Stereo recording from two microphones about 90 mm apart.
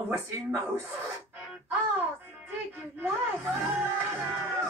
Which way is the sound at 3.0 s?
25° right (ahead or behind).